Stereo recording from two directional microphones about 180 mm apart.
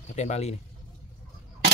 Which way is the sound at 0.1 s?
40° left (ahead or behind).